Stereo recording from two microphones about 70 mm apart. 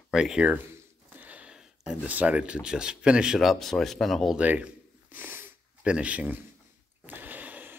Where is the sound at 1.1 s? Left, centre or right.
Right.